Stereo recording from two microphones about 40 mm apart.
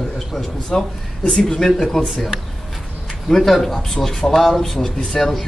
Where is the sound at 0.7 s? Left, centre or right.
Centre.